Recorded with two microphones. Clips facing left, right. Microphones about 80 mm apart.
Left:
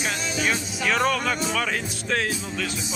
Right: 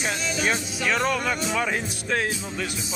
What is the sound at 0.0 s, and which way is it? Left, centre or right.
Music, right.